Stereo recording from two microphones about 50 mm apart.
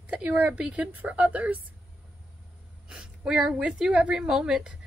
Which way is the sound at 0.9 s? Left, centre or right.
Right.